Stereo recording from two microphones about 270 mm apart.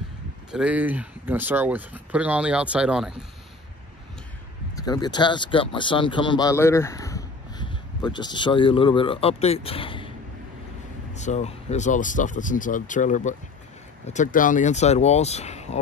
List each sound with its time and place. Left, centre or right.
0.5 s speech: centre
4.8 s speech: centre
11.1 s speech: left